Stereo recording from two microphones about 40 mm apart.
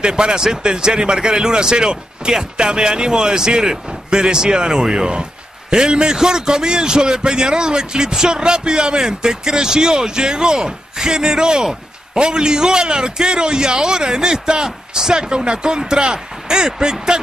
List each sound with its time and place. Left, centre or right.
0.0 s a man's voice: right